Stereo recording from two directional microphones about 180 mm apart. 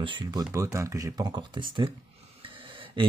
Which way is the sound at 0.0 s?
25° right (ahead or behind).